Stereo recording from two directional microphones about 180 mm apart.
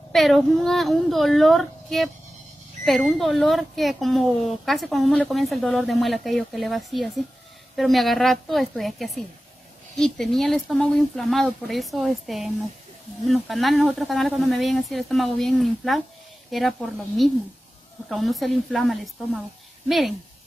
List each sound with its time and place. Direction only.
0.1 s speech: centre (ahead or behind)